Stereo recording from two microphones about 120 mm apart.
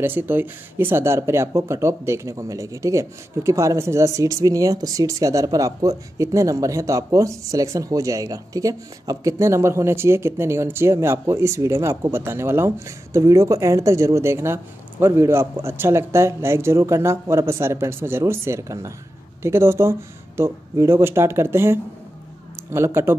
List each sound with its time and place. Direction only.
0.0 s speech: 15° right (ahead or behind)